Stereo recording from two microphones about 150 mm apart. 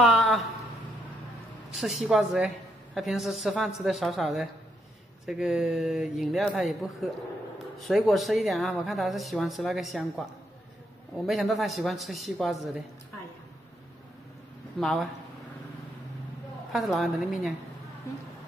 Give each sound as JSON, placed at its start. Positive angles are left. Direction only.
{"t": 0.0, "sound": "a sound", "side_deg": 0}
{"t": 1.8, "sound": "a woman's voice", "side_deg": 0}
{"t": 11.2, "sound": "a woman's voice", "side_deg": 0}
{"t": 14.8, "sound": "a woman's voice", "side_deg": 0}
{"t": 16.7, "sound": "a woman's voice", "side_deg": 0}